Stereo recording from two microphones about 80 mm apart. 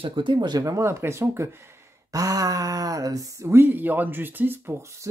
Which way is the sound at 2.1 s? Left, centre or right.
Right.